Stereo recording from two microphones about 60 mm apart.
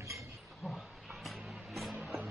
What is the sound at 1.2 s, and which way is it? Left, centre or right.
Music, centre.